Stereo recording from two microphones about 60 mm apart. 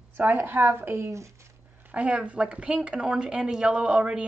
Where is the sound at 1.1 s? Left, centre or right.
Right.